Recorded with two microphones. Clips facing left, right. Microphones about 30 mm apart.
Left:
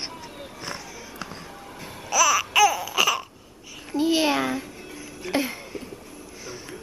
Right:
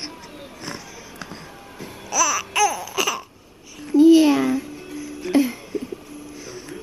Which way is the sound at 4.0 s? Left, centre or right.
Centre.